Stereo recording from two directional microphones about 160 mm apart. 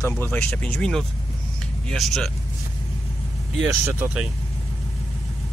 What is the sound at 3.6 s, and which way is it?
Speech, 10° right (ahead or behind).